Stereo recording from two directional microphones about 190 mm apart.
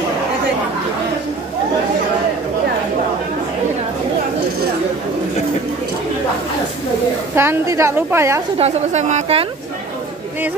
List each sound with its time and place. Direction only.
7.3 s a woman's voice: 15° right (ahead or behind)
8.5 s a woman's voice: 35° right (ahead or behind)